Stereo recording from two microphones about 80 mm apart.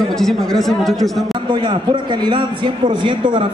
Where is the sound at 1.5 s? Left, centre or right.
Right.